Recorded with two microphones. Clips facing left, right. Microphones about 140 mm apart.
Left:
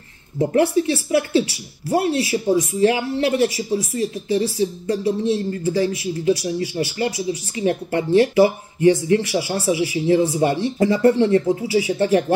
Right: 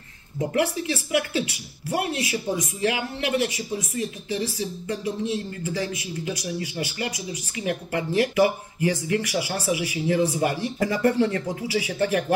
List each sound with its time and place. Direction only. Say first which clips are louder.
0.4 s speech: left 7 dB; 30° left (ahead or behind)